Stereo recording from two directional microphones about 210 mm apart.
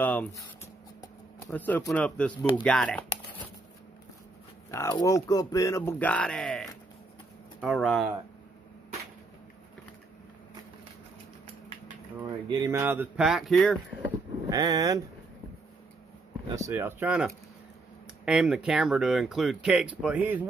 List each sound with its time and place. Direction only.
0.0 s a sound: 10° left (ahead or behind)
1.5 s speech: 5° left (ahead or behind)
4.6 s speech: 15° left (ahead or behind)
12.4 s speech: 15° right (ahead or behind); by 13.7 s centre (ahead or behind)
14.0 s vehicle: 15° right (ahead or behind)
16.4 s speech: 15° right (ahead or behind)